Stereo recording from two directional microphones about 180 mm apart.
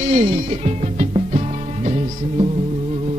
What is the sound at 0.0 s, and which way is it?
Music, 35° right (ahead or behind).